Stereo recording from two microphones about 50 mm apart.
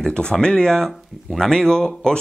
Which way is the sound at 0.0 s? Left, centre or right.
Centre.